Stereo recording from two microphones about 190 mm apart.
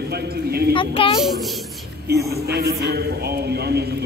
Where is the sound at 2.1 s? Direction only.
55° right (ahead or behind).